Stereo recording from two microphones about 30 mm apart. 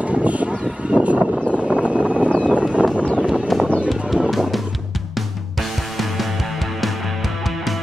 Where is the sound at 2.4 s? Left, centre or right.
Right.